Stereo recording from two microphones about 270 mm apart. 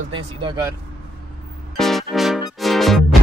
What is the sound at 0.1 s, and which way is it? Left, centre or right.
Speech, centre.